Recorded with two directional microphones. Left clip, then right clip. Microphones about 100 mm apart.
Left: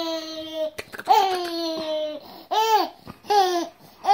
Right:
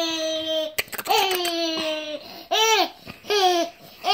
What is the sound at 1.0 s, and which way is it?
Babbling, 20° left (ahead or behind).